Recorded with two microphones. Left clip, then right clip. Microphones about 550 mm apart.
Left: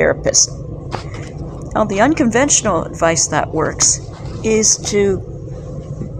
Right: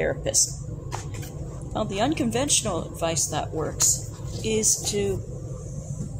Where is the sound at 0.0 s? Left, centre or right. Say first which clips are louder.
Left 11 dB; right.